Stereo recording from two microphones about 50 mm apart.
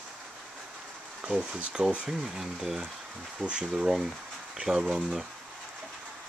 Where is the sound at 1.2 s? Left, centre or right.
Centre.